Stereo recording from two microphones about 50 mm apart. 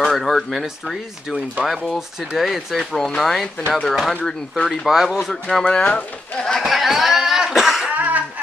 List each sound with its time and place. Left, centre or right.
0.0 s speech: centre
2.0 s speech: centre
4.8 s speech: centre
5.7 s speech: centre
6.6 s a sound: centre
7.9 s a sound: right